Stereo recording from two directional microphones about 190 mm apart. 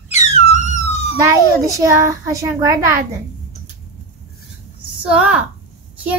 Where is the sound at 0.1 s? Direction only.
35° left (ahead or behind).